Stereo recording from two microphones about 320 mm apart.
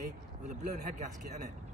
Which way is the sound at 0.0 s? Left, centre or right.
Right.